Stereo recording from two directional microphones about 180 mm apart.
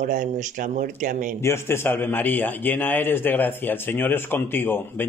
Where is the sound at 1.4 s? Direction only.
15° left (ahead or behind).